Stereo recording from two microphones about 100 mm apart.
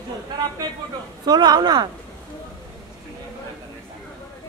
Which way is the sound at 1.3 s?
45° right (ahead or behind).